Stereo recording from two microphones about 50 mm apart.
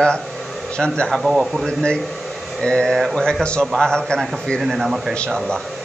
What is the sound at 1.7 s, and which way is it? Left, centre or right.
A man's voice, centre.